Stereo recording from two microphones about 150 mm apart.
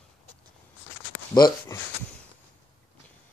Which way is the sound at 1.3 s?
30° left (ahead or behind).